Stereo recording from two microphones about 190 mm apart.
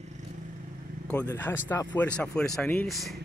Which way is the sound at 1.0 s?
10° left (ahead or behind).